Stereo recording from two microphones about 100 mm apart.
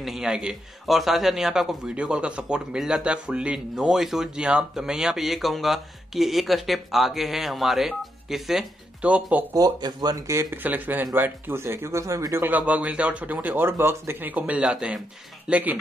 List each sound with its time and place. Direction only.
0.0 s a man's voice: 5° right (ahead or behind)
9.0 s speech: 15° right (ahead or behind)
9.5 s speech: 40° right (ahead or behind)
10.5 s speech: 20° right (ahead or behind)